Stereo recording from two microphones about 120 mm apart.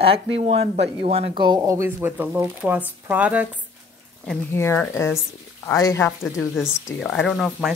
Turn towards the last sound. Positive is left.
turn(degrees=0)  # may be behind; listen again after turning